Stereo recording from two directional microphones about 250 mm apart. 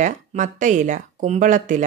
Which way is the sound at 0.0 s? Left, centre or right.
Right.